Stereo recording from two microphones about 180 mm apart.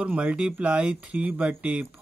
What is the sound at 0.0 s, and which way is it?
Speech, 5° right (ahead or behind).